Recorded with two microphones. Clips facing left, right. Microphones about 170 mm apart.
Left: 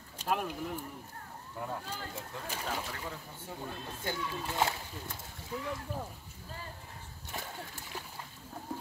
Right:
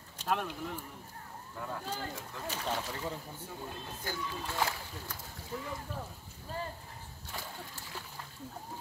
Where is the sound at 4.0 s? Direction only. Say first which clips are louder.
Left 2 dB; 25° left (ahead or behind).